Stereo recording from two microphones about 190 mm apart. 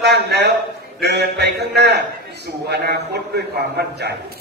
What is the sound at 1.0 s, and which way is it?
A man's voice, 60° right (ahead or behind).